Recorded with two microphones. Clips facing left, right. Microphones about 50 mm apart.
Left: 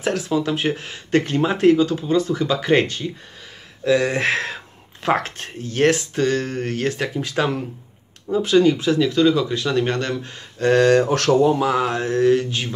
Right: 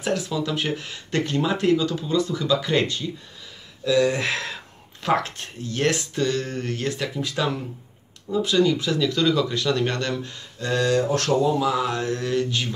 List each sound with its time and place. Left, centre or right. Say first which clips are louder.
0.3 s speech: left 5 dB; left
10.6 s speech: left 7 dB; left
11.4 s speech: left 4 dB; left